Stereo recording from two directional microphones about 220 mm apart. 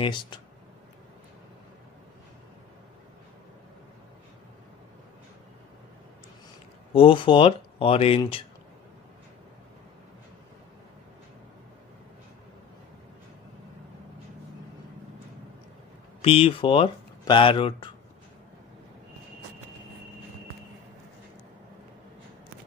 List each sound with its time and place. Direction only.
0.0 s speech: 20° left (ahead or behind)
6.9 s speech: 25° left (ahead or behind)
16.2 s speech: 25° left (ahead or behind)